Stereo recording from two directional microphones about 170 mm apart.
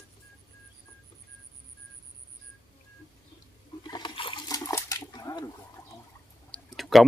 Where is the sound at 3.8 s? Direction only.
25° left (ahead or behind).